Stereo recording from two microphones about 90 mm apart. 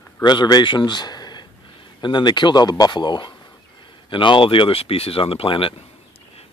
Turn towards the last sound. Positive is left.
turn(degrees=80)